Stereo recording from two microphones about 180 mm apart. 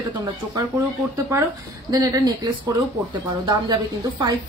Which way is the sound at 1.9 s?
20° right (ahead or behind).